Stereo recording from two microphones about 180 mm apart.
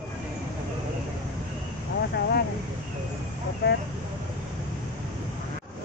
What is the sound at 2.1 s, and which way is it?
Speech, 60° left (ahead or behind).